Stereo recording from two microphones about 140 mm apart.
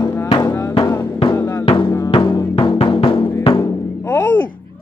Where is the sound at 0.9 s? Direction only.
15° left (ahead or behind).